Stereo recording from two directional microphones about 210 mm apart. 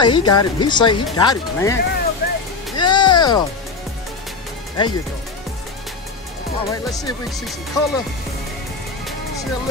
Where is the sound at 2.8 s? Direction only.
20° left (ahead or behind).